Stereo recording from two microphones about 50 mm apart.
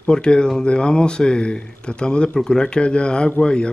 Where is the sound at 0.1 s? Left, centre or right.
Centre.